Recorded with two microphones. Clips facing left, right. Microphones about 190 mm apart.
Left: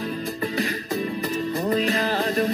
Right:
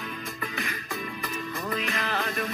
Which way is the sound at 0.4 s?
35° left (ahead or behind).